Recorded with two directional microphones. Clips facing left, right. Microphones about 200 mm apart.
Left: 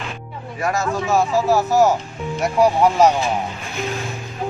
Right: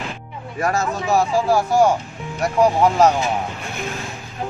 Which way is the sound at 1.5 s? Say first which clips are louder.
Even; 5° left (ahead or behind).